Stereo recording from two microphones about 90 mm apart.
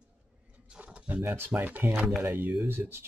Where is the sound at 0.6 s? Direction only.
15° right (ahead or behind).